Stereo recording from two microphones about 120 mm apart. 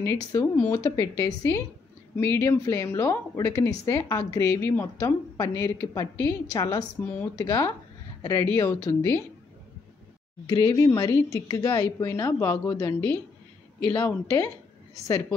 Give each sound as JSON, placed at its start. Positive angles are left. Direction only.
{"t": 0.0, "sound": "a woman's voice", "side_deg": 25}
{"t": 7.0, "sound": "speech", "side_deg": 15}
{"t": 7.3, "sound": "a woman's voice", "side_deg": 25}
{"t": 10.5, "sound": "a woman's voice", "side_deg": 30}